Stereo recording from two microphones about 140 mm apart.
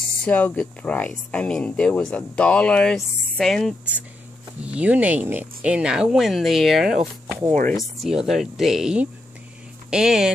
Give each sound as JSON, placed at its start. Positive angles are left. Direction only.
{"t": 0.2, "sound": "speech", "side_deg": 10}
{"t": 4.6, "sound": "speech", "side_deg": -10}
{"t": 7.2, "sound": "music", "side_deg": -15}
{"t": 8.0, "sound": "speech", "side_deg": -5}